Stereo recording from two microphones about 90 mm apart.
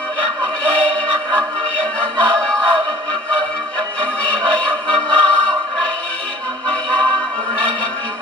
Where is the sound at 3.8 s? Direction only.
15° left (ahead or behind).